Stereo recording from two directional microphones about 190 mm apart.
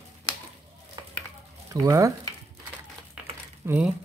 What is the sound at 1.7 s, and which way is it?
Speech, 15° right (ahead or behind).